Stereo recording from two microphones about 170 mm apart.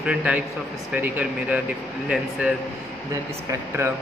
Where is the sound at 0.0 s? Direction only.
5° right (ahead or behind).